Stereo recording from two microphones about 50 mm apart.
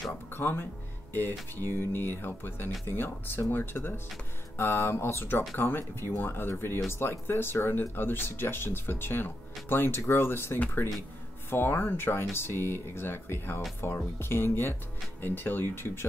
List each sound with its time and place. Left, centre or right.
0.3 s speech: left
15.7 s speech: left